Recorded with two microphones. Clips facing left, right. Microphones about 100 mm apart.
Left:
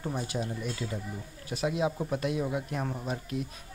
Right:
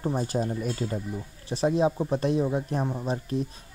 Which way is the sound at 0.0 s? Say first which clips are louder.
Right 6 dB; 35° right (ahead or behind).